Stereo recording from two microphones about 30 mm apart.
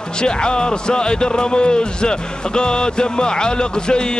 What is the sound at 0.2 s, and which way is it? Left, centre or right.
Speech, left.